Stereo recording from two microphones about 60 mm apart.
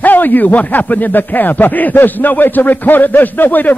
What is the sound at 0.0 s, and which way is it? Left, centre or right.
Speech, left.